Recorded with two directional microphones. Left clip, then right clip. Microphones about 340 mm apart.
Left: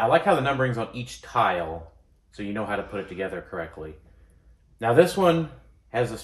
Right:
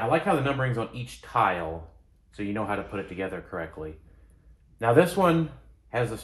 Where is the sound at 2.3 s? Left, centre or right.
Centre.